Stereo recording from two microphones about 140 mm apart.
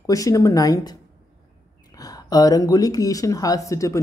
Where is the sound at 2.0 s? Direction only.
25° left (ahead or behind).